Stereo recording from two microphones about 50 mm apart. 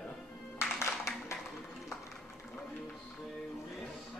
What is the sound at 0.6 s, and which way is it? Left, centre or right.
Music, left.